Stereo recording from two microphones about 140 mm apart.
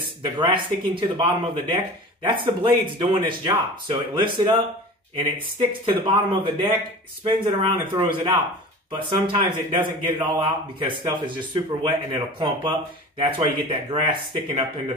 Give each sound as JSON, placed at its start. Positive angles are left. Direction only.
{"t": 0.2, "sound": "speech", "side_deg": -35}